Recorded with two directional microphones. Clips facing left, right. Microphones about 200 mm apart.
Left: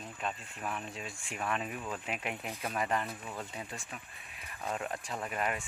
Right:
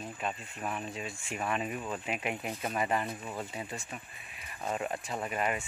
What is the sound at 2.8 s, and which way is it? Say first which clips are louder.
Speech: right 2 dB; 5° right (ahead or behind).